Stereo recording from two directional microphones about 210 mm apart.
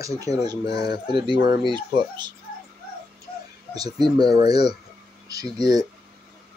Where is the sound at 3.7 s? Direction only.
20° right (ahead or behind).